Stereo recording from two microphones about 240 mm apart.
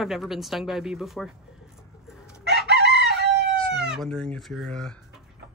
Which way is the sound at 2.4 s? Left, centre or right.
Right.